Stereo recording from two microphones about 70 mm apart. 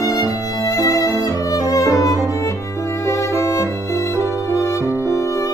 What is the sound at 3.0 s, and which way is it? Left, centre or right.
Violin, left.